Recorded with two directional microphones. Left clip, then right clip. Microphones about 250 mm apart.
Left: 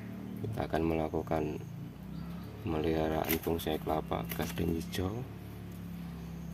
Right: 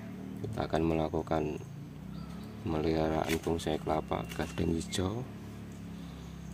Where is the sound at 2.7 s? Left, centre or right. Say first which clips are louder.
Right 1 dB; centre.